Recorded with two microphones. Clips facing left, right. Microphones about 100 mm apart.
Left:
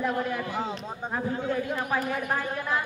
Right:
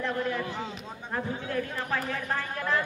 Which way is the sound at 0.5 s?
40° left (ahead or behind).